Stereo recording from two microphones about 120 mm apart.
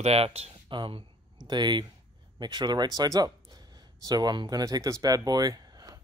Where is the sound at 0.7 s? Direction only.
40° right (ahead or behind).